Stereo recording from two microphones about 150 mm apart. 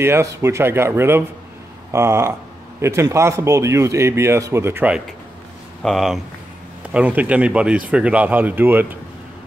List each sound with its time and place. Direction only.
0.0 s speech: 15° right (ahead or behind)
5.8 s speech: centre (ahead or behind)